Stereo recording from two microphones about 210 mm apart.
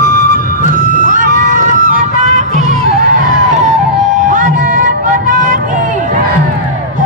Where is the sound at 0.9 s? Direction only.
35° left (ahead or behind).